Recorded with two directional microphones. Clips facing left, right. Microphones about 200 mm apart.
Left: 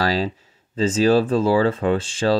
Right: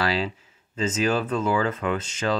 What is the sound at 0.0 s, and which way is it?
Speech, 40° left (ahead or behind).